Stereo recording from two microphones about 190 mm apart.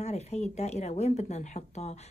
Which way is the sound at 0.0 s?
35° left (ahead or behind).